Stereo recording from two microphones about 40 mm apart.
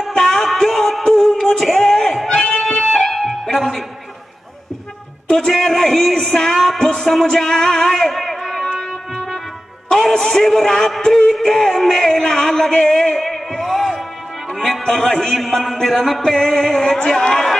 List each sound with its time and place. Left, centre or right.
0.1 s music: centre
2.2 s music: centre
5.5 s music: centre
8.1 s a sound: centre
9.8 s a man's voice: centre
11.0 s music: centre
14.5 s a man's voice: centre
16.3 s music: centre